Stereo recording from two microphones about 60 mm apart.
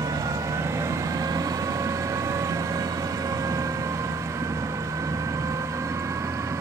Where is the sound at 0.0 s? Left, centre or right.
Right.